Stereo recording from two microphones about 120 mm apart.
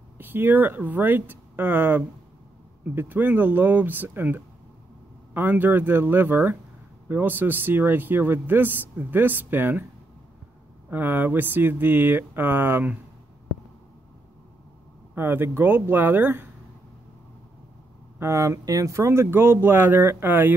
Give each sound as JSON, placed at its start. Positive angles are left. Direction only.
{"t": 0.2, "sound": "speech", "side_deg": -15}
{"t": 10.9, "sound": "speech", "side_deg": -15}
{"t": 15.1, "sound": "speech", "side_deg": -20}
{"t": 18.2, "sound": "speech", "side_deg": -25}